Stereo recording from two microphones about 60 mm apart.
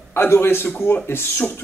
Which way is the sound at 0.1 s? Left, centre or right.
Left.